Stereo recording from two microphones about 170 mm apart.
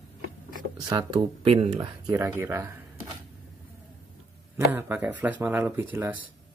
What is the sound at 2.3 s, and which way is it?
Speech, 15° right (ahead or behind).